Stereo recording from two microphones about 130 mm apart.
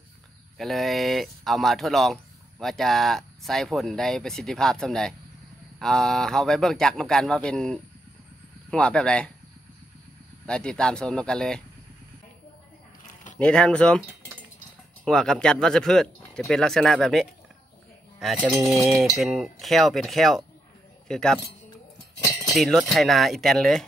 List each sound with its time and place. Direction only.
0.6 s speech: centre (ahead or behind)
10.4 s speech: 5° left (ahead or behind)
13.0 s a sound: 70° left (ahead or behind)
13.4 s speech: 10° left (ahead or behind)
15.0 s speech: 5° left (ahead or behind)
22.5 s speech: centre (ahead or behind)